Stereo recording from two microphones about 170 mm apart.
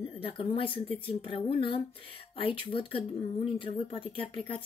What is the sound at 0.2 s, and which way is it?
Speech, 35° left (ahead or behind).